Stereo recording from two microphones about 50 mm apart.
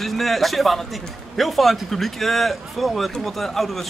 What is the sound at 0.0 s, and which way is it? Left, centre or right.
A man's voice, centre.